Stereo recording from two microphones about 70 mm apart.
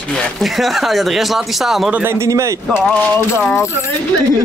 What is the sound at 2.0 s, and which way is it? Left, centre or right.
Speech, right.